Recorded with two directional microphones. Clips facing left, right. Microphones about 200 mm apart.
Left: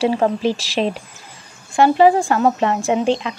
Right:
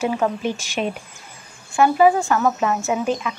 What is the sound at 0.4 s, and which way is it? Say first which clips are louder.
Speech: left 5 dB; 90° left.